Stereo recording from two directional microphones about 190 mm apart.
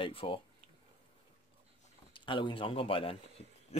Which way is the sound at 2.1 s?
25° left (ahead or behind).